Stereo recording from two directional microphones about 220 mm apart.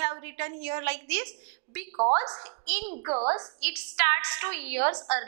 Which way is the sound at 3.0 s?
30° right (ahead or behind).